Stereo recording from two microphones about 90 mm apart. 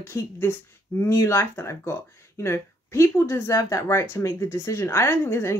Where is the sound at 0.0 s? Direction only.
30° left (ahead or behind).